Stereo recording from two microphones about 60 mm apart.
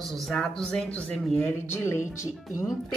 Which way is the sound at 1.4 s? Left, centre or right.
Left.